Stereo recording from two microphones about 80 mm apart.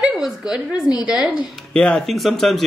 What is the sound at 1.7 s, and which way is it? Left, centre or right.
Speech, centre.